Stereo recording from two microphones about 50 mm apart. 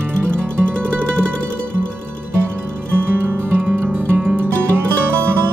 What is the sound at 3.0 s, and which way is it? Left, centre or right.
Music, right.